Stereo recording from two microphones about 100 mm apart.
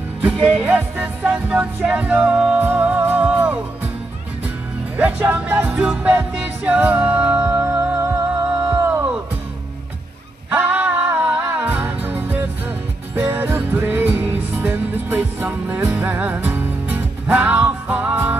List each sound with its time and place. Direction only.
0.2 s music: 15° right (ahead or behind)
4.9 s music: 15° right (ahead or behind)
10.5 s music: 15° right (ahead or behind)